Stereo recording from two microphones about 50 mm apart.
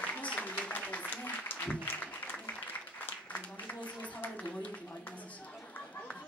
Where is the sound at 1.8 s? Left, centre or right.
Left.